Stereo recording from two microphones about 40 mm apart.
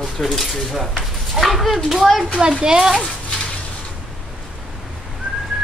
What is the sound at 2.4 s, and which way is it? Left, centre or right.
Speech, right.